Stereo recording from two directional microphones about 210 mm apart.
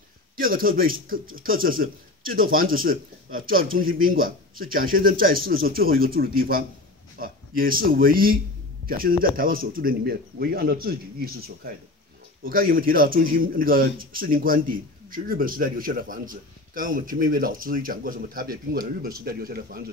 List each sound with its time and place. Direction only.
0.4 s a man's voice: 45° right (ahead or behind)